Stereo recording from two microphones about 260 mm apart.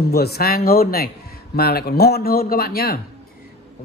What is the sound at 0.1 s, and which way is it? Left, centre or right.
A man's voice, left.